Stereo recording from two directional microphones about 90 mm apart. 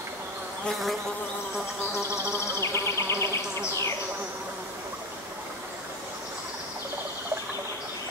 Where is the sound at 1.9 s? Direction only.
30° left (ahead or behind).